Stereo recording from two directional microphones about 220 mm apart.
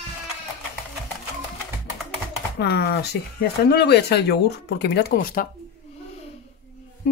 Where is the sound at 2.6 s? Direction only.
50° left (ahead or behind).